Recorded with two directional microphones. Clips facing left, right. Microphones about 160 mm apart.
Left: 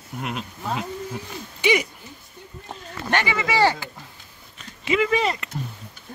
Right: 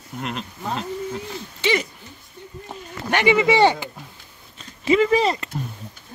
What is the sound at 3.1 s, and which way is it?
Speech, 15° right (ahead or behind).